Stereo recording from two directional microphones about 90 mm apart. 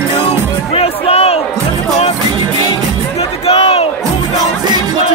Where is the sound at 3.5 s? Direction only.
90° left.